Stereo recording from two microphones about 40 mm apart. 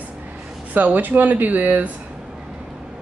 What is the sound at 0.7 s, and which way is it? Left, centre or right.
Speech, right.